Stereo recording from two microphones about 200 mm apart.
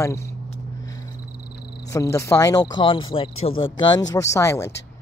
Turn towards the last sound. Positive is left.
turn(degrees=15)  # may be behind; listen again after turning